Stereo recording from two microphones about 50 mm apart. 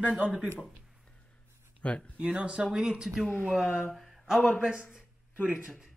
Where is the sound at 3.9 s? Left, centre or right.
Centre.